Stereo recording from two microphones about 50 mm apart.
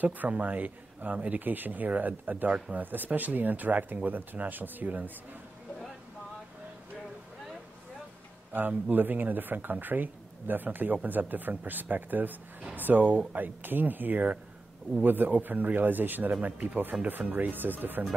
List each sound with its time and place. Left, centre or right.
0.0 s speech: right
8.5 s speech: right
16.3 s speech: right